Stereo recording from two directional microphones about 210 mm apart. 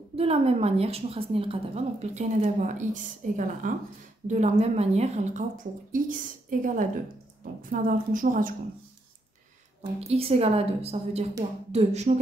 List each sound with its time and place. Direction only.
0.1 s a woman's voice: 30° right (ahead or behind)
9.9 s a woman's voice: 30° right (ahead or behind)